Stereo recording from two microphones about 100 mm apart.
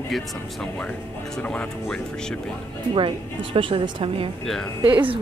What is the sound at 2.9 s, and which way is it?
A woman's voice, 60° right (ahead or behind).